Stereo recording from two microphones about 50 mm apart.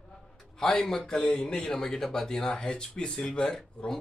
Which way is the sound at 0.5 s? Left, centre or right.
Centre.